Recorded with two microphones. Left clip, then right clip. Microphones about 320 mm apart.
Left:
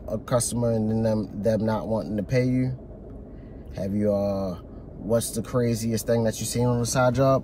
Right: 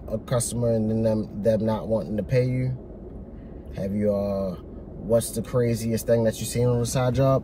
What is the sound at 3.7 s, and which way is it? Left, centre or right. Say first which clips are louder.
Speech: even; centre.